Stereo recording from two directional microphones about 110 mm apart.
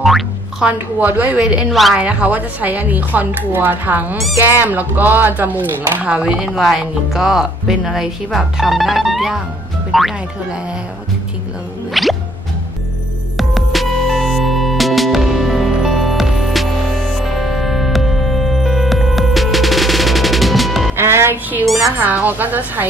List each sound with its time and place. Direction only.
0.0 s speech: 5° right (ahead or behind)
2.0 s speech: 10° right (ahead or behind)
11.9 s music: centre (ahead or behind)
13.4 s music: centre (ahead or behind)
20.9 s music: 20° right (ahead or behind)
21.9 s speech: 15° right (ahead or behind)